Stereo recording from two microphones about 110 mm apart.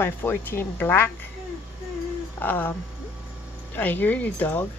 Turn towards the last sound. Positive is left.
turn(degrees=15)  # may be behind; listen again after turning